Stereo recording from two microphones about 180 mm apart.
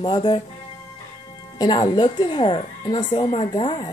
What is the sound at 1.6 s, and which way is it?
A woman's voice, 25° left (ahead or behind).